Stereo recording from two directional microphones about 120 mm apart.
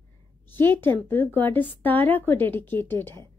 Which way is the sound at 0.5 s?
15° left (ahead or behind).